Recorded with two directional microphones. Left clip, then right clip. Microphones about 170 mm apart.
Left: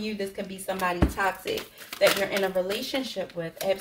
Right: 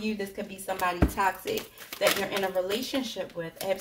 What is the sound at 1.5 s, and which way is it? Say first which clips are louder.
Speech: left 1 dB; 25° right (ahead or behind).